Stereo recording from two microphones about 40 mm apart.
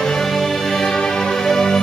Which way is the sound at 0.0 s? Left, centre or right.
Centre.